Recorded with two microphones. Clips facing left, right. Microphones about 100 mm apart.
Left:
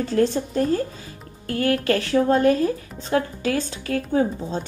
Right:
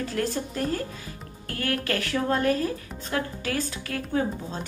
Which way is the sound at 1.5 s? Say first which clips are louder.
Left 8 dB; 30° left (ahead or behind).